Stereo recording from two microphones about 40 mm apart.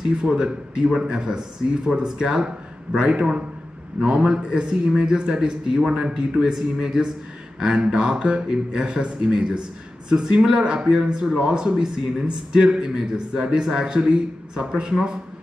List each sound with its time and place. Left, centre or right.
0.3 s speech: right
6.5 s speech: centre